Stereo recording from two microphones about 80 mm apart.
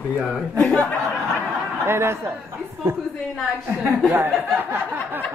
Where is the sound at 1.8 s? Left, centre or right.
Right.